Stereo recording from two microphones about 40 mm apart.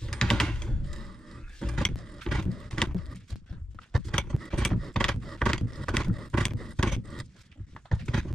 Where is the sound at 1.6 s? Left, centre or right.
Centre.